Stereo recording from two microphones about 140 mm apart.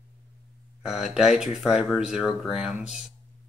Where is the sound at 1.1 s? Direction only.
5° right (ahead or behind).